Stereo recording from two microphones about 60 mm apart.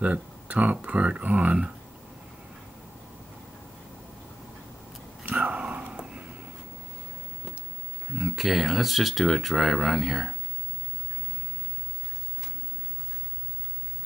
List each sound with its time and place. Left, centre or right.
0.0 s speech: right
5.2 s whispering: centre
8.1 s speech: centre